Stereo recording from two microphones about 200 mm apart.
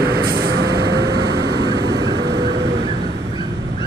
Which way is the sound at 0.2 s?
50° right (ahead or behind).